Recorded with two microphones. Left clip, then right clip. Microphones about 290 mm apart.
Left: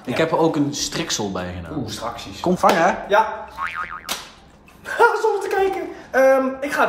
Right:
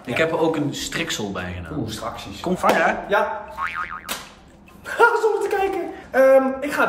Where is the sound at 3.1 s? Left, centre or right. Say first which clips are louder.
Left 3 dB; centre.